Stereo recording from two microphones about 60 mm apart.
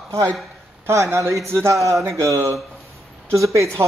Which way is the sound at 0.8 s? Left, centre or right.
Right.